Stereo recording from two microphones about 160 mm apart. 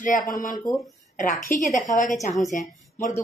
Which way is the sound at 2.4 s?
55° left (ahead or behind).